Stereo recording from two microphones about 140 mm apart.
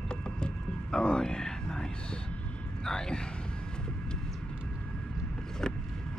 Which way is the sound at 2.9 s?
5° left (ahead or behind).